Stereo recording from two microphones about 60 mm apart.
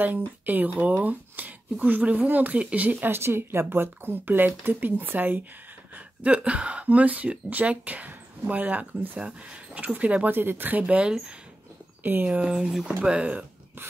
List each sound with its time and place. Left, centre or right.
0.0 s speech: right
3.1 s speech: right
5.9 s speech: right
10.3 s speech: right; by 11.3 s centre
12.0 s speech: right
12.4 s speech: centre